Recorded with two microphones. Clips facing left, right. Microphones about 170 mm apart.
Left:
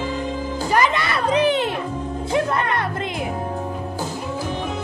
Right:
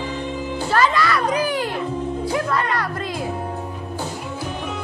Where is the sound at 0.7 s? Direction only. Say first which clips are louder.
Right 1 dB; 20° left (ahead or behind).